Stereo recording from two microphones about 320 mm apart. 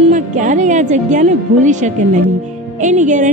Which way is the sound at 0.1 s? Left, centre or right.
Right.